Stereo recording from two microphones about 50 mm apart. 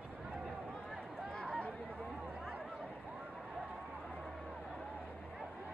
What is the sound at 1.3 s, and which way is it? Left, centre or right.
Chatter, left.